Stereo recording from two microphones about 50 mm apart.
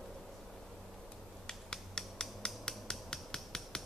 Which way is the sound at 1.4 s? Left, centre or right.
Centre.